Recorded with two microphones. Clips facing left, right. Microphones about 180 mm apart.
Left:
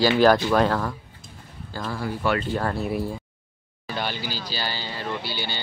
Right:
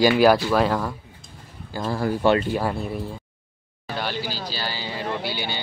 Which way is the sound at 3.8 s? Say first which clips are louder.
Even; centre (ahead or behind).